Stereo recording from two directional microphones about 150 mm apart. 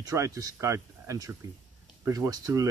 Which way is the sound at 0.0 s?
20° right (ahead or behind).